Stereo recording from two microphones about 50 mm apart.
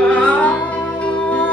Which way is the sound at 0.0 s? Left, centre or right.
Left.